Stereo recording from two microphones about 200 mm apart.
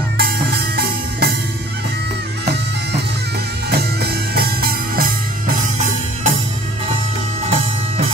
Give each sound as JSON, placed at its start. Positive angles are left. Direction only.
{"t": 0.2, "sound": "music", "side_deg": -50}
{"t": 2.4, "sound": "bagpipes", "side_deg": -55}
{"t": 3.7, "sound": "music", "side_deg": -50}
{"t": 7.4, "sound": "music", "side_deg": -30}